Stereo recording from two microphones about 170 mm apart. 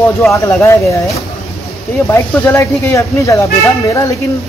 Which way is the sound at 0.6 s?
15° left (ahead or behind).